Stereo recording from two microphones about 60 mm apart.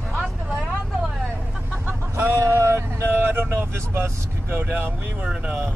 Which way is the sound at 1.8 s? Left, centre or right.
Right.